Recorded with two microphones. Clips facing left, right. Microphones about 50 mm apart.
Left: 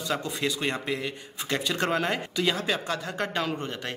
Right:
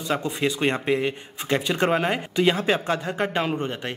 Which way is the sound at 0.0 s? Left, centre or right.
Right.